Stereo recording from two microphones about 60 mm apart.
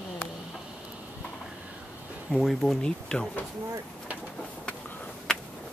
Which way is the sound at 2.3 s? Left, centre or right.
Centre.